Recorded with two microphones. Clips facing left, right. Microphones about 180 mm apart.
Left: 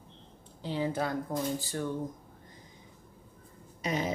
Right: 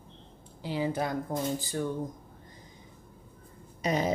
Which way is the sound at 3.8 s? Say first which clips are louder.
Right 4 dB; 40° right (ahead or behind).